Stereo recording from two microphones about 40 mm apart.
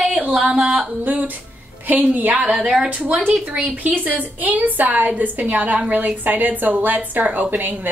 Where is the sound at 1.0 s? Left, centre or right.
Right.